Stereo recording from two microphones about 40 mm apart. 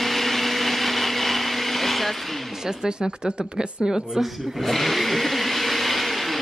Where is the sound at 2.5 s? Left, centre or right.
Centre.